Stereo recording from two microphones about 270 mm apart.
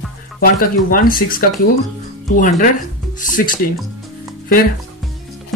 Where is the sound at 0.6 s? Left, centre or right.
Left.